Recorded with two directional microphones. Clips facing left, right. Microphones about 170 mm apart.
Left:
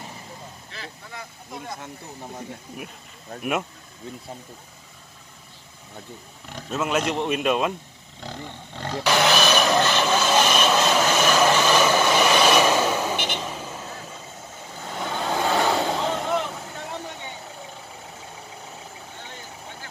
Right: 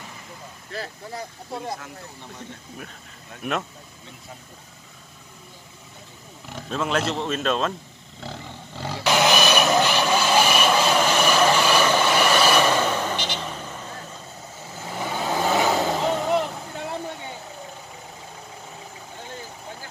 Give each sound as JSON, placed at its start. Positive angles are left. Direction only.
{"t": 0.7, "sound": "speech", "side_deg": -40}
{"t": 3.4, "sound": "speech", "side_deg": 5}
{"t": 6.5, "sound": "a man's voice", "side_deg": 5}
{"t": 8.2, "sound": "roaring cats", "side_deg": -5}
{"t": 9.8, "sound": "vehicle", "side_deg": -10}
{"t": 11.0, "sound": "vehicle", "side_deg": 5}
{"t": 11.5, "sound": "vehicle", "side_deg": -10}
{"t": 11.8, "sound": "vehicle", "side_deg": 5}
{"t": 12.3, "sound": "train", "side_deg": -5}
{"t": 12.5, "sound": "vehicle", "side_deg": 10}
{"t": 14.7, "sound": "vehicle", "side_deg": -5}